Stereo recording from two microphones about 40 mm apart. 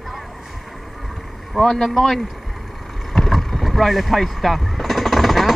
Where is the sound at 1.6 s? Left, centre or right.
Centre.